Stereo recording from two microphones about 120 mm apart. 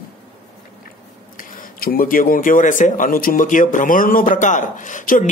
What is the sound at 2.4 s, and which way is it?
Speech, 90° left.